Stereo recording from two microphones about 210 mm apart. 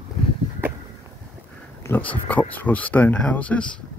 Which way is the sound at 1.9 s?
5° left (ahead or behind).